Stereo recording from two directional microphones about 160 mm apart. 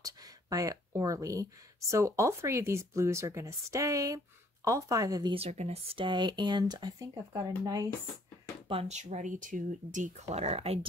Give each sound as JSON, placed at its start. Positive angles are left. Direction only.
{"t": 0.0, "sound": "speech", "side_deg": -20}
{"t": 5.3, "sound": "speech", "side_deg": -40}
{"t": 8.6, "sound": "speech", "side_deg": -40}